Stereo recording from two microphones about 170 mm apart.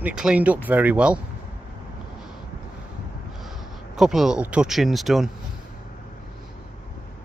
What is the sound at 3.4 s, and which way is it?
Speech, centre (ahead or behind).